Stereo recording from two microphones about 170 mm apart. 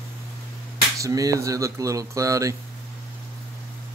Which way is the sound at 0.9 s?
20° right (ahead or behind).